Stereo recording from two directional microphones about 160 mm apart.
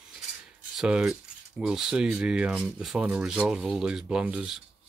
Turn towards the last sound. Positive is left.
turn(degrees=-5)  # may be behind; listen again after turning